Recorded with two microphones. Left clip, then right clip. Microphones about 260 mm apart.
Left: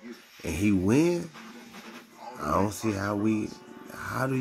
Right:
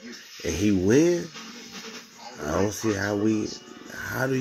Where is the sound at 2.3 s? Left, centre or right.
Centre.